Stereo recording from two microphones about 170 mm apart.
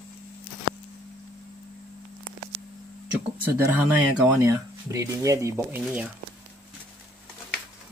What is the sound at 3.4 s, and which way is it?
Speech, 15° right (ahead or behind).